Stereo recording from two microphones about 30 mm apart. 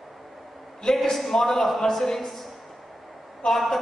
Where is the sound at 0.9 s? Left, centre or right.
Centre.